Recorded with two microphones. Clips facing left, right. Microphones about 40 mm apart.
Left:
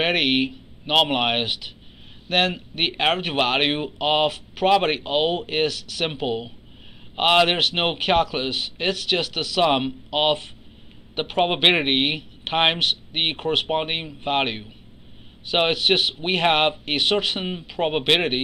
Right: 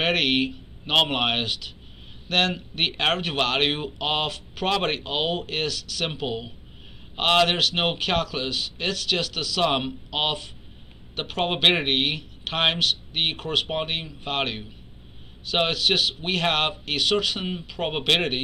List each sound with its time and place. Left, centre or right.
0.0 s speech: centre